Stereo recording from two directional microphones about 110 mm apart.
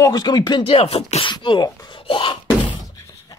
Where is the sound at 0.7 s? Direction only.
65° left (ahead or behind).